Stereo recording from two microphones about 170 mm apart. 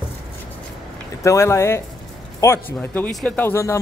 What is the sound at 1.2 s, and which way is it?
Speech, 15° left (ahead or behind).